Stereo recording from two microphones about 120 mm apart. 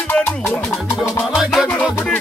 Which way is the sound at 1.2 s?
Centre (ahead or behind).